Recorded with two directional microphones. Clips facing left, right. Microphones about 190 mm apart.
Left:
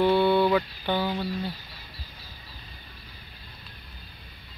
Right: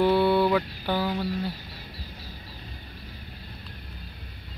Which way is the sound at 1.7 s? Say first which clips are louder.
Right 5 dB; 40° right (ahead or behind).